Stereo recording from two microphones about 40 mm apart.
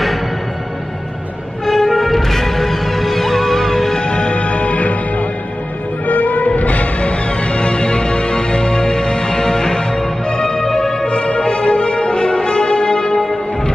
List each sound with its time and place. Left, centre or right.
1.7 s music: centre
4.0 s music: left